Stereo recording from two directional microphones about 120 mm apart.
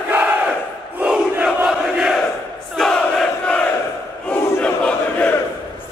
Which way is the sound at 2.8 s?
5° left (ahead or behind).